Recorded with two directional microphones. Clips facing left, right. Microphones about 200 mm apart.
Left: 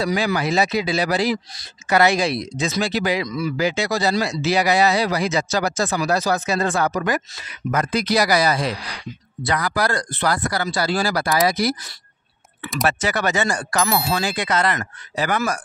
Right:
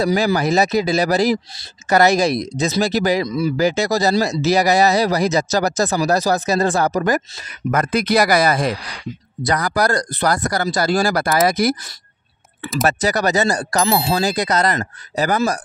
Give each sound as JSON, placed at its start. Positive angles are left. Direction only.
{"t": 0.0, "sound": "speech", "side_deg": -40}
{"t": 3.3, "sound": "speech", "side_deg": -30}
{"t": 12.8, "sound": "speech", "side_deg": -40}